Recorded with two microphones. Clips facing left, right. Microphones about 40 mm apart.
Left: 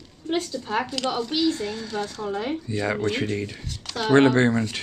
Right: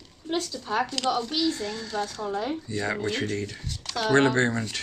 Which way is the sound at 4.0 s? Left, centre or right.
Left.